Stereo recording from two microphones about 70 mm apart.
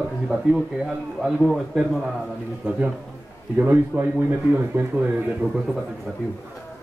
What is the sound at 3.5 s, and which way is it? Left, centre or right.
A man's voice, right.